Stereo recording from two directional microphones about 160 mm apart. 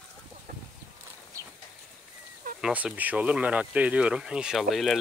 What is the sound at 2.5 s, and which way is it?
Speech, 5° right (ahead or behind).